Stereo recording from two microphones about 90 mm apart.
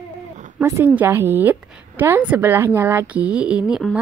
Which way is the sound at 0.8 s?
20° right (ahead or behind).